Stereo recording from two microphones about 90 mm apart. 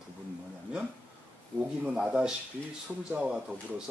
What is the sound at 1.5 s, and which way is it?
Speech, 10° right (ahead or behind).